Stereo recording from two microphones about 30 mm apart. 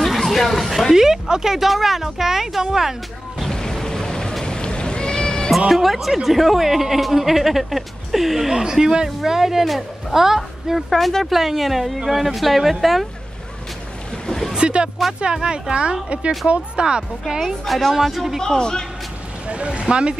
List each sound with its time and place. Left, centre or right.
0.0 s a sound: centre
0.9 s a woman's voice: centre
1.6 s a woman's voice: centre
3.4 s a sound: centre
4.5 s cat: left
5.7 s a woman's voice: centre
10.9 s speech: centre
11.2 s speech: centre
14.6 s speech: right
15.0 s speech: centre
15.7 s speech: right
17.6 s speech: centre
18.4 s a man's voice: left
19.4 s speech: right